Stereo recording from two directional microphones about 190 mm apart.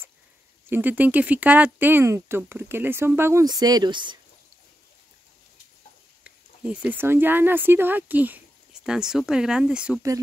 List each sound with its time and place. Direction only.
0.7 s speech: 10° right (ahead or behind)
6.2 s speech: 5° right (ahead or behind)